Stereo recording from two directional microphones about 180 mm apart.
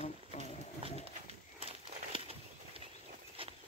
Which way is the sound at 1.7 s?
30° right (ahead or behind).